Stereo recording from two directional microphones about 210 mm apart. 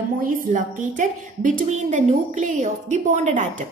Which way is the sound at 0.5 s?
35° right (ahead or behind).